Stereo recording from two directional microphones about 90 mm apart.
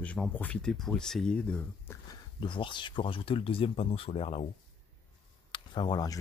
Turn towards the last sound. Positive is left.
turn(degrees=60)  # may be behind; listen again after turning